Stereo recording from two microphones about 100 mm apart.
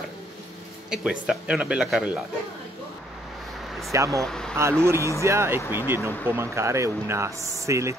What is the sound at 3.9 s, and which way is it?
Speech, 30° right (ahead or behind).